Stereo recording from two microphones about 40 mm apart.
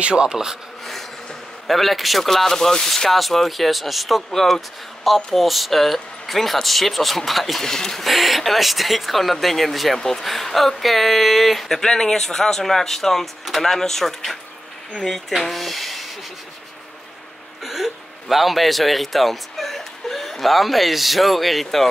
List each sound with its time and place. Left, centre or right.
0.0 s speech: right
1.7 s speech: centre
7.6 s speech: centre
8.1 s speech: centre
11.8 s speech: centre
17.6 s a man's voice: centre